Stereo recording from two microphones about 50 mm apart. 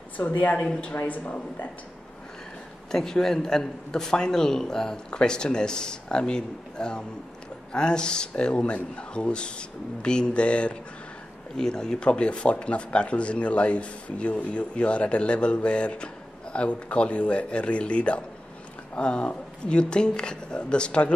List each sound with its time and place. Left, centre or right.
0.2 s speech: left
2.9 s a man's voice: centre